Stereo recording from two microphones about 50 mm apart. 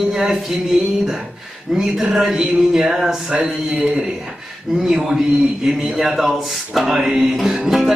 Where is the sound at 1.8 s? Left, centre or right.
Centre.